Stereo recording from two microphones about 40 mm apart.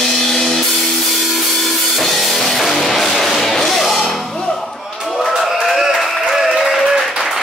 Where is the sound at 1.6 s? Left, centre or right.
Centre.